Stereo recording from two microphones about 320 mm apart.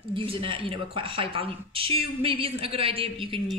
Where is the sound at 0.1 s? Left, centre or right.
Centre.